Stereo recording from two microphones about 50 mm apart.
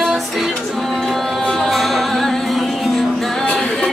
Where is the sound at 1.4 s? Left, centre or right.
Centre.